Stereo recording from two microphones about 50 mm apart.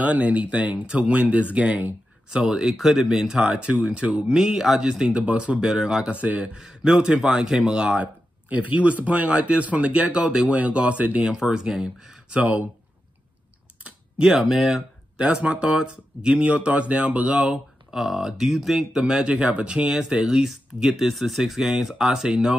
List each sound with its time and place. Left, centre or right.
0.0 s speech: right
4.3 s speech: centre
5.2 s speech: right
6.1 s speech: right
6.5 s speech: centre
8.0 s speech: right
11.4 s speech: centre
12.3 s speech: right
13.8 s typing: centre
14.5 s speech: centre
15.1 s speech: right
17.9 s speech: centre